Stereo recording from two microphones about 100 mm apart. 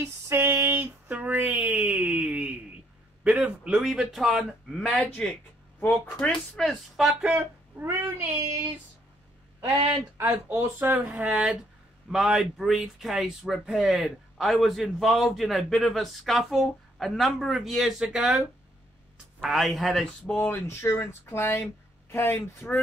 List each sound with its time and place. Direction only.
0.0 s a sound: 25° right (ahead or behind)
3.3 s speech: 10° right (ahead or behind)
4.8 s speech: 15° left (ahead or behind); by 8.4 s 25° right (ahead or behind)
10.1 s speech: 25° right (ahead or behind)
11.1 s speech: 10° right (ahead or behind)
19.4 s speech: centre (ahead or behind)
20.3 s speech: 20° left (ahead or behind)